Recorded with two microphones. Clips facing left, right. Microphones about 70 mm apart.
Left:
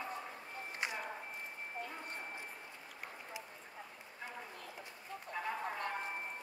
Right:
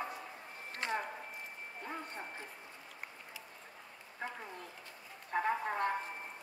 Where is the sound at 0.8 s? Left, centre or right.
Centre.